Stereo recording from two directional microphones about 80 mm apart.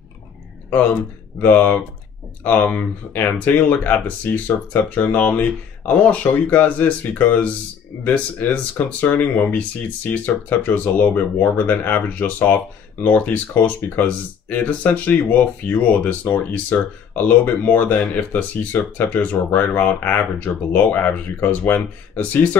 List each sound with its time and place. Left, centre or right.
1.4 s speech: left